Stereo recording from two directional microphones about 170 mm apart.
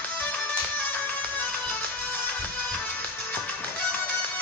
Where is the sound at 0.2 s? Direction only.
10° left (ahead or behind).